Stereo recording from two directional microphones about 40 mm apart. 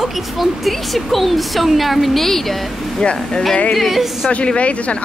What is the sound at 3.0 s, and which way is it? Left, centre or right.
Speech, left.